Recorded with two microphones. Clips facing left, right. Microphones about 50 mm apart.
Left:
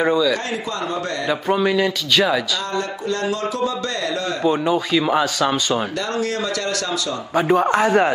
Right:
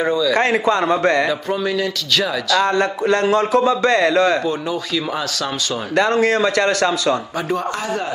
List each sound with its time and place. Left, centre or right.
0.0 s speech: centre
0.3 s a man's voice: right
1.3 s speech: centre
2.6 s a man's voice: right
4.4 s speech: centre
5.9 s a man's voice: right
7.3 s speech: left